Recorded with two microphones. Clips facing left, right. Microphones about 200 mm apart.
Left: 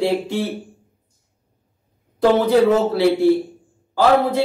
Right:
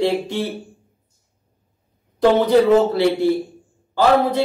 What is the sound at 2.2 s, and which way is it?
A man's voice, 5° left (ahead or behind).